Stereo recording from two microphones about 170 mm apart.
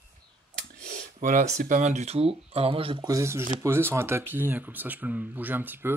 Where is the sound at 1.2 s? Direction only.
50° right (ahead or behind); by 2.9 s 35° right (ahead or behind).